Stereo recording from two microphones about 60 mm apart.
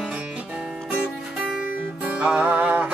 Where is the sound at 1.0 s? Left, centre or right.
Centre.